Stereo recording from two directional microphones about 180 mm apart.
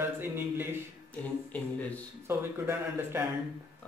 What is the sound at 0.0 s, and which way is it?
Speech, 10° right (ahead or behind).